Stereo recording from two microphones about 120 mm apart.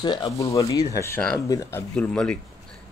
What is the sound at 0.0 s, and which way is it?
Speech, 40° left (ahead or behind).